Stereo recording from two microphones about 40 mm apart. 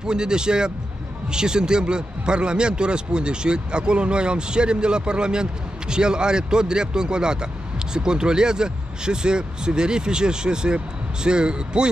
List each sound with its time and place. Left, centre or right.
0.0 s a man's voice: centre